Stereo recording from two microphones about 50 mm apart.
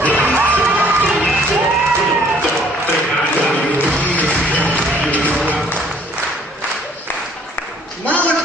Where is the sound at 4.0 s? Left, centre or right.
Left.